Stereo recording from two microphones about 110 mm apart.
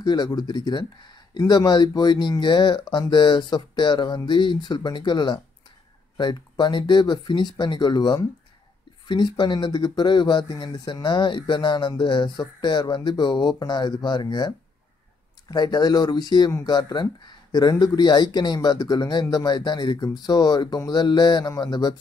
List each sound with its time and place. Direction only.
0.0 s speech: 40° left (ahead or behind)
15.5 s speech: 40° left (ahead or behind)